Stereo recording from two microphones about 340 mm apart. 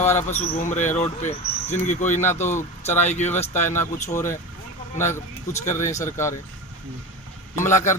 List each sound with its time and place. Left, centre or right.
0.0 s speech: centre
3.5 s speech: centre
7.5 s speech: centre